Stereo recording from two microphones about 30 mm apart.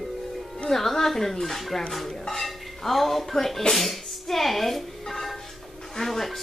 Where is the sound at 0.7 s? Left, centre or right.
Centre.